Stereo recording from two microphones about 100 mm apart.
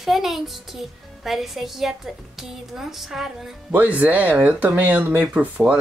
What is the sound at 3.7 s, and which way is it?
Speech, 15° right (ahead or behind).